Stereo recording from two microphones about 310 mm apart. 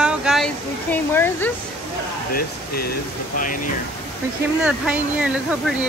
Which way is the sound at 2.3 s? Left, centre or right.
Left.